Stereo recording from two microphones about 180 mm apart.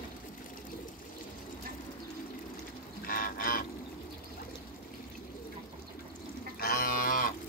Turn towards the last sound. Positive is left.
turn(degrees=50)  # may be behind; listen again after turning